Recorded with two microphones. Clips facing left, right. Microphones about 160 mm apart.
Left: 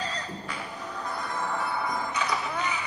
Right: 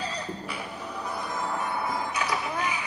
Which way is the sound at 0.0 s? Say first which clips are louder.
Right 1 dB; 10° right (ahead or behind).